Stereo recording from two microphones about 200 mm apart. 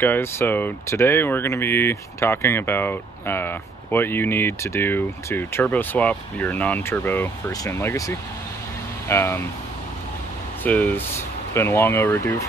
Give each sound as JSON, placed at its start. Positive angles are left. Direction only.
{"t": 0.0, "sound": "speech", "side_deg": 10}
{"t": 10.6, "sound": "speech", "side_deg": 10}